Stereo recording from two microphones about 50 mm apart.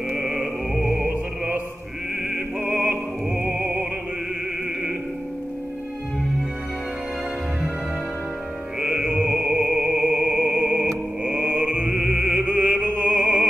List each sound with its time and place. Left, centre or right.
0.1 s music: centre
0.9 s music: right
8.7 s music: centre
11.2 s mantra: right
11.9 s music: centre